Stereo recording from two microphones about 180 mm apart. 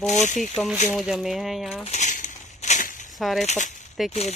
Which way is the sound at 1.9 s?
40° left (ahead or behind).